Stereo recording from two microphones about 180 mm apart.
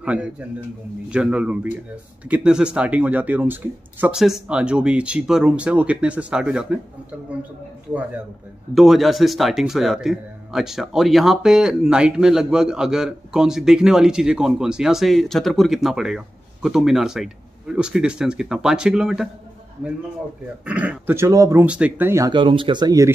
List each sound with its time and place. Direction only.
0.0 s speech: 5° right (ahead or behind)
8.7 s speech: centre (ahead or behind)
20.6 s speech: 5° right (ahead or behind)
21.6 s speech: 5° right (ahead or behind)
22.3 s speech: 30° right (ahead or behind)